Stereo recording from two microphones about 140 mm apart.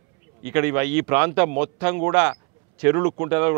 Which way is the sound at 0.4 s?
15° right (ahead or behind).